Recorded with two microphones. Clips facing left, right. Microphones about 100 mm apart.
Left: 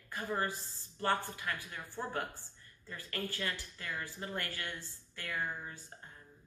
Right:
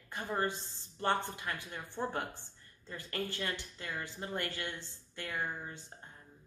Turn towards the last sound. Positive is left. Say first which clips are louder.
# right 1 dB
turn(degrees=-20)  # may be behind; listen again after turning